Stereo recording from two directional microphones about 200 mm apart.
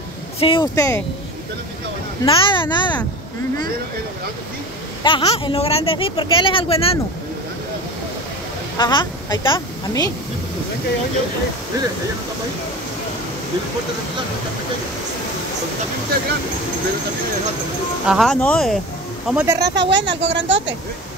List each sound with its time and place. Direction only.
0.4 s speech: 25° left (ahead or behind)
2.2 s speech: 25° left (ahead or behind)
5.0 s speech: 30° left (ahead or behind)
8.7 s a woman's voice: 20° left (ahead or behind)
18.0 s speech: centre (ahead or behind)
19.2 s speech: 10° right (ahead or behind)
19.6 s speech: 60° right (ahead or behind)